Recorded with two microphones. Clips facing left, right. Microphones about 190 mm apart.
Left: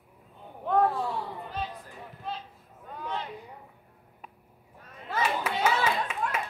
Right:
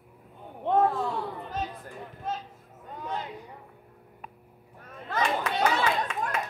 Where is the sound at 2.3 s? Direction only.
45° right (ahead or behind).